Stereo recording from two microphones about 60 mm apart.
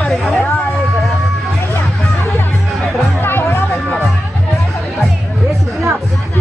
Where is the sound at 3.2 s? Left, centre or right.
Left.